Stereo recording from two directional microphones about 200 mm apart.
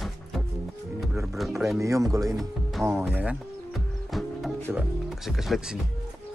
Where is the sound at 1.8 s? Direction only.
15° right (ahead or behind).